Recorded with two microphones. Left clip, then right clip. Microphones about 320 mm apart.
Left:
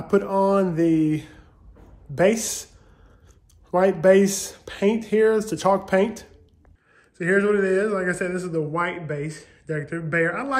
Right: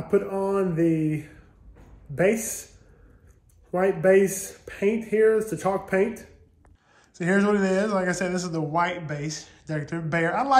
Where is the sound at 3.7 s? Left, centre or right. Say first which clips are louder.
Left 3 dB; centre.